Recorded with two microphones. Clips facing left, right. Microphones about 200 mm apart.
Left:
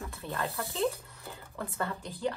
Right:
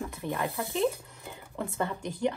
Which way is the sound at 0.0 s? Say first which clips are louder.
Right 4 dB; 15° right (ahead or behind).